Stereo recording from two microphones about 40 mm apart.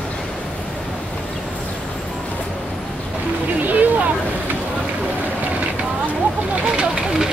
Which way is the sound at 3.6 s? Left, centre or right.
Right.